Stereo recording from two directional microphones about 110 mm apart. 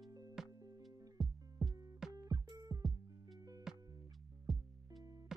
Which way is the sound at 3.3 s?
35° right (ahead or behind).